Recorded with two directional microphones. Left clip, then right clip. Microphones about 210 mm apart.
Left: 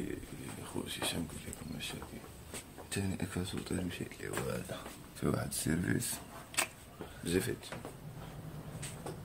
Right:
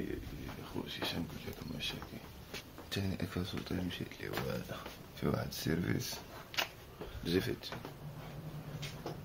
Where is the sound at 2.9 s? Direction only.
5° left (ahead or behind).